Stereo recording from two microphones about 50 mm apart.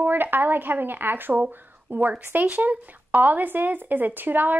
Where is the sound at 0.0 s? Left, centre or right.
Right.